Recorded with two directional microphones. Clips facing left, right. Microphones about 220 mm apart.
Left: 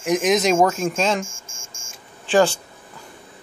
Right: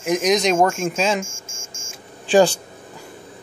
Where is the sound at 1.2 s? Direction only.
15° left (ahead or behind).